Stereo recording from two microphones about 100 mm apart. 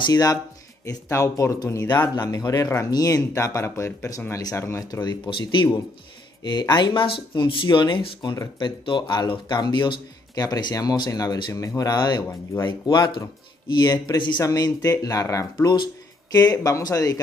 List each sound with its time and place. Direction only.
0.0 s speech: 40° left (ahead or behind)
1.9 s speech: 40° left (ahead or behind); by 5.0 s 25° left (ahead or behind)
5.0 s speech: 45° left (ahead or behind)
10.4 s speech: 40° left (ahead or behind)
11.5 s speech: 35° left (ahead or behind); by 14.4 s 50° left (ahead or behind)
14.4 s speech: 40° left (ahead or behind)
15.7 s speech: 45° left (ahead or behind)